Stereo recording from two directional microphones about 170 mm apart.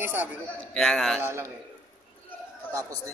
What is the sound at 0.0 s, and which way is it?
Speech, 15° right (ahead or behind).